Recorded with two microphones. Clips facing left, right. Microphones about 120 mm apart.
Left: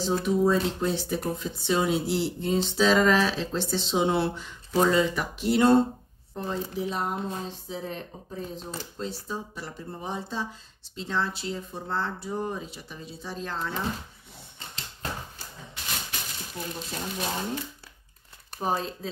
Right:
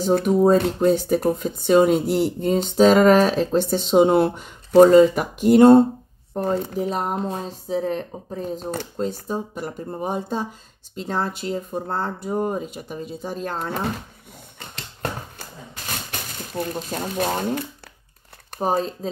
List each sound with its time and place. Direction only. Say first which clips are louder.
0.0 s speech: right 7 dB; 50° right (ahead or behind)
14.6 s a sound: right 8 dB; 60° right (ahead or behind)
16.1 s speech: right 5 dB; 55° right (ahead or behind)
18.6 s speech: right 6 dB; 45° right (ahead or behind)